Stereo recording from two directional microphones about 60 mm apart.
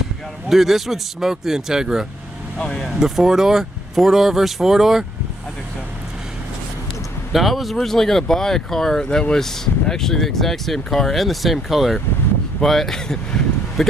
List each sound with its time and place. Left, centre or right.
0.5 s speech: centre
2.6 s speech: centre
2.9 s speech: centre
7.3 s speech: centre